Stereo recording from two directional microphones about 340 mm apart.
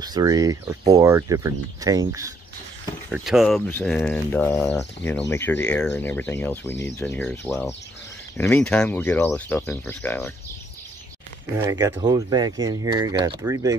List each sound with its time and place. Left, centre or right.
0.0 s speech: centre
11.5 s speech: centre